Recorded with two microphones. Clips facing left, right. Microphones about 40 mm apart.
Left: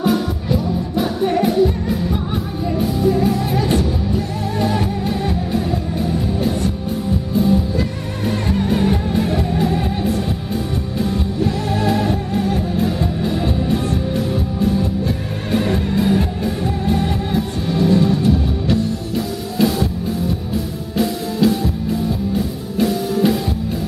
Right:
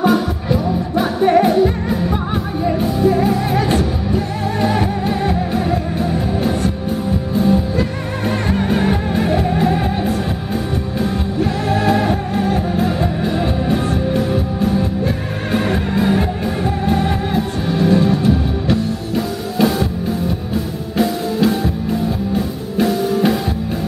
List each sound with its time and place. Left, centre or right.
0.0 s music: centre
21.0 s music: centre
22.8 s music: centre